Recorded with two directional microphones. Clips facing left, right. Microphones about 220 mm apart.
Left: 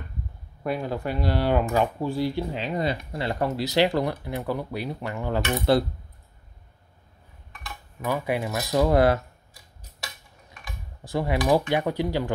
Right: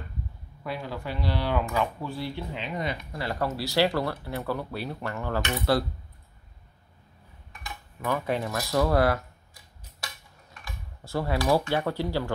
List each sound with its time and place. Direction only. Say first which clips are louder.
0.7 s speech: left 6 dB; 50° left (ahead or behind); by 5.9 s 20° left (ahead or behind)
8.0 s speech: left 2 dB; 10° left (ahead or behind)
10.6 s speech: left 1 dB; 15° left (ahead or behind)